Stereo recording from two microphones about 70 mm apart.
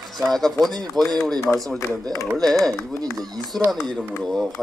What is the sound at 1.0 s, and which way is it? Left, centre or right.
Speech, right.